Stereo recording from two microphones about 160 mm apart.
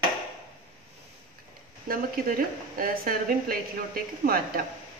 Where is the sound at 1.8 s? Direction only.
65° right (ahead or behind).